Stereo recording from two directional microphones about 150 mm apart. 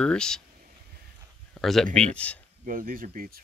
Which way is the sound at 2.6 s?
65° right (ahead or behind).